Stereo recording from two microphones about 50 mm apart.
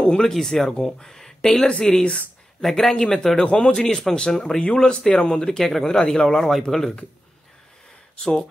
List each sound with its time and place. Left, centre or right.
0.0 s speech: centre
0.3 s speech: centre; by 2.2 s left
2.6 s speech: centre
3.4 s speech: left
3.7 s speech: centre